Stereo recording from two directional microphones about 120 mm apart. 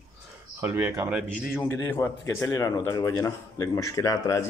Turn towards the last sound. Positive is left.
turn(degrees=25)  # may be behind; listen again after turning